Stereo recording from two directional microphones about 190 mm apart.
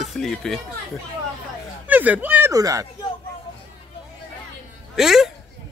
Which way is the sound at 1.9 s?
10° right (ahead or behind).